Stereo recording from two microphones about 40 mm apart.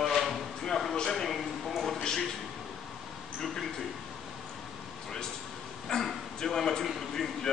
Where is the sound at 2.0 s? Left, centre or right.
Centre.